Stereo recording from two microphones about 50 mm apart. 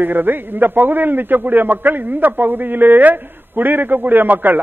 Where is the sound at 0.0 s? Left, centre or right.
Right.